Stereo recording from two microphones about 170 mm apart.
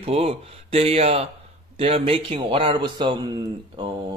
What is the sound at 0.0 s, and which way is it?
Speech, 35° right (ahead or behind).